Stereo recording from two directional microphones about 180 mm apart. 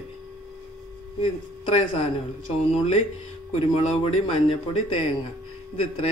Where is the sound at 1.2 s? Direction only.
35° left (ahead or behind).